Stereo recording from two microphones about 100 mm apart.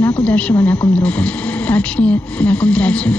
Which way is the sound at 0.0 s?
10° left (ahead or behind).